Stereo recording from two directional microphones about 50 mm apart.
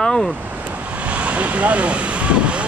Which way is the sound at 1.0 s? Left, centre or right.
Right.